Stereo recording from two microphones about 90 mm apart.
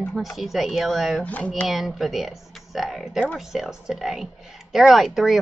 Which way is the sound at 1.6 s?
Centre (ahead or behind).